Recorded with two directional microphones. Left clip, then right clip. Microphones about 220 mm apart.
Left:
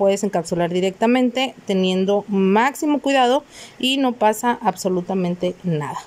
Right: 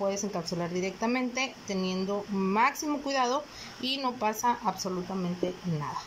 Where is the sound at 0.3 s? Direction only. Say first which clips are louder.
Left 13 dB; 40° left (ahead or behind).